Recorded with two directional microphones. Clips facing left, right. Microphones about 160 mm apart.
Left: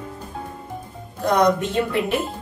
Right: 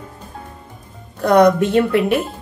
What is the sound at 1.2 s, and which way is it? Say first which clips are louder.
Speech: right 6 dB; 65° right (ahead or behind).